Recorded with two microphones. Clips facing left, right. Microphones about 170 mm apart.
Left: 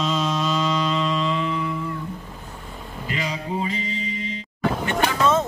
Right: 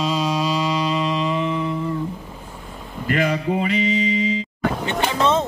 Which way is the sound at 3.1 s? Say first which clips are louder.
Right 8 dB; 55° right (ahead or behind).